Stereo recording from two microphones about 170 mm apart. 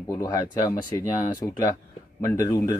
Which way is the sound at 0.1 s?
20° left (ahead or behind).